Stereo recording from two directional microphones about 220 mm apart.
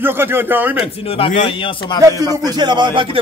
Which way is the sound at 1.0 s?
25° left (ahead or behind).